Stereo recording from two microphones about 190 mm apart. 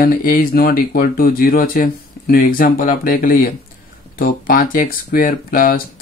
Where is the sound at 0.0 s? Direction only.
45° left (ahead or behind).